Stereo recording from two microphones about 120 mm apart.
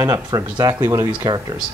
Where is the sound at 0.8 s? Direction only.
20° right (ahead or behind).